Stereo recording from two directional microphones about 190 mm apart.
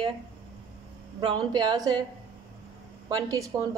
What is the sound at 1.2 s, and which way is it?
Speech, 25° right (ahead or behind).